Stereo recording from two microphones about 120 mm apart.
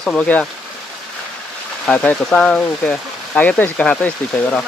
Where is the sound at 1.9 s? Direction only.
5° left (ahead or behind).